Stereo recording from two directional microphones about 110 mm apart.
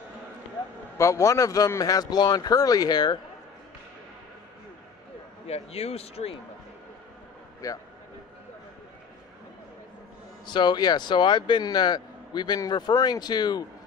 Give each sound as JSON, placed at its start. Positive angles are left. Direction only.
{"t": 0.9, "sound": "speech", "side_deg": 30}
{"t": 5.5, "sound": "speech", "side_deg": 70}
{"t": 7.6, "sound": "speech", "side_deg": 30}
{"t": 10.4, "sound": "speech", "side_deg": 45}